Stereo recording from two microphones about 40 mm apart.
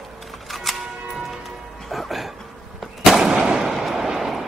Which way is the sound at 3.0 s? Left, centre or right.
Centre.